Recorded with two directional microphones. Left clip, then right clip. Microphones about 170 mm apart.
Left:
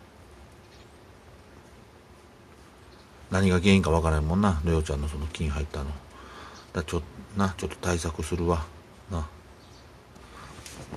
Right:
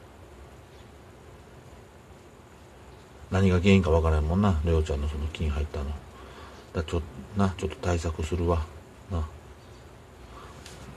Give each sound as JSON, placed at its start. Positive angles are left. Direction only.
{"t": 3.3, "sound": "a man's voice", "side_deg": 30}